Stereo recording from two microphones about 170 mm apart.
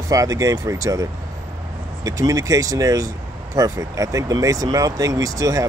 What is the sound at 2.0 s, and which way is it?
Speech, 20° right (ahead or behind).